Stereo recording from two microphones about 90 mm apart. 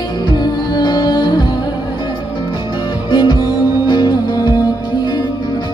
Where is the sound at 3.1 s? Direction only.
50° left (ahead or behind).